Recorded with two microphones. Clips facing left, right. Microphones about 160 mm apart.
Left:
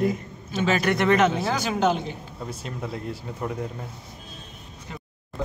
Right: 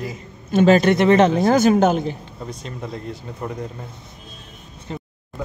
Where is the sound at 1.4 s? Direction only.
45° right (ahead or behind).